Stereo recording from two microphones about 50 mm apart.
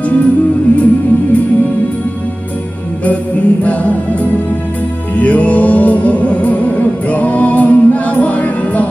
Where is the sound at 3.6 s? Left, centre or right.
Left.